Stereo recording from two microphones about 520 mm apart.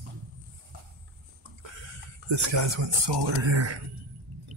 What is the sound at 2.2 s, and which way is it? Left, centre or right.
Speech, right.